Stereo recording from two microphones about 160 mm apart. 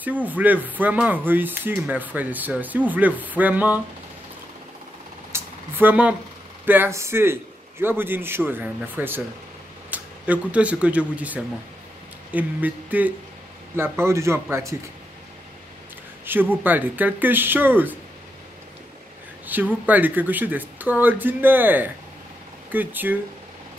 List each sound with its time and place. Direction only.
0.0 s speech: 10° right (ahead or behind)
5.3 s a sound: 10° right (ahead or behind)
6.6 s speech: 10° right (ahead or behind)
16.3 s speech: 10° right (ahead or behind)
19.4 s speech: 10° right (ahead or behind)